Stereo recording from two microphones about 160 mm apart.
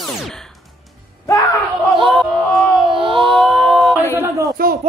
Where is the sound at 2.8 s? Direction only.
30° right (ahead or behind).